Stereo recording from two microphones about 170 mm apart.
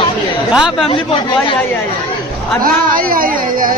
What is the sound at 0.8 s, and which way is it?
Speech, 30° left (ahead or behind).